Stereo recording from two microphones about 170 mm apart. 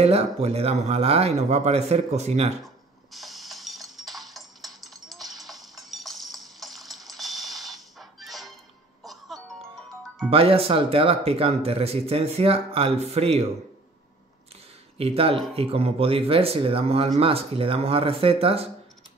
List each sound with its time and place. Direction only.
0.0 s speech: 35° right (ahead or behind)
2.6 s a sound: centre (ahead or behind)
9.0 s music: centre (ahead or behind)
10.3 s speech: 35° right (ahead or behind)
15.0 s speech: 35° right (ahead or behind)